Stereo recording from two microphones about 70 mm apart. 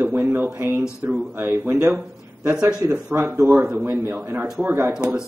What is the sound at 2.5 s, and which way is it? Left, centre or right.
Speech, centre.